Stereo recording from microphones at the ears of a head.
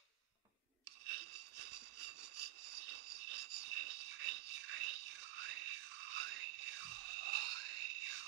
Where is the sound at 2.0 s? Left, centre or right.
Right.